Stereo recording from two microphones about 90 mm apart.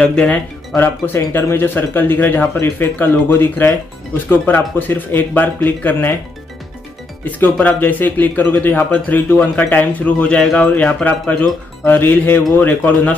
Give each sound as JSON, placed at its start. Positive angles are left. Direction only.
{"t": 0.0, "sound": "speech", "side_deg": 10}
{"t": 0.7, "sound": "speech", "side_deg": 25}
{"t": 7.2, "sound": "speech", "side_deg": 20}